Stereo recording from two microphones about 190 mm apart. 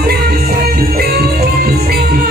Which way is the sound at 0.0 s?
55° right (ahead or behind).